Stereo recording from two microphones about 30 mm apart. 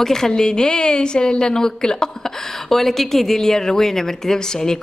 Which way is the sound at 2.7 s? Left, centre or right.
Centre.